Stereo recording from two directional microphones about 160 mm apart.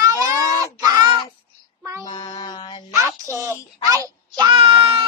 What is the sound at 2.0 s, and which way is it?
Mantra, 30° left (ahead or behind).